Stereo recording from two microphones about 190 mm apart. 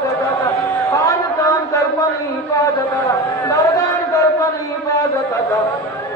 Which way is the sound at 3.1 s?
20° left (ahead or behind).